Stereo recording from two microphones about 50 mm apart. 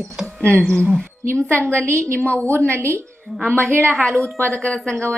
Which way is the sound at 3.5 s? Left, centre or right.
Right.